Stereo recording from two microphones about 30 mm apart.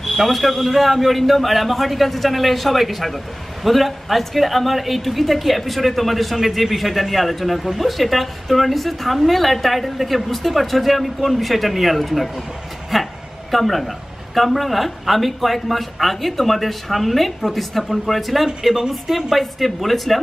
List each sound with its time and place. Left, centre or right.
0.0 s a man's voice: centre
12.9 s a sound: centre
13.5 s a man's voice: centre
18.6 s a man's voice: centre